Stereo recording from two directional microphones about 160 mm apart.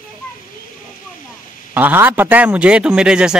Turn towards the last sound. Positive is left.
turn(degrees=-5)  # may be behind; listen again after turning